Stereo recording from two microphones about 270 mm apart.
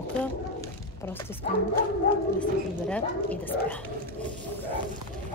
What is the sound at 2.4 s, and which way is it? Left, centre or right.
Speech, centre.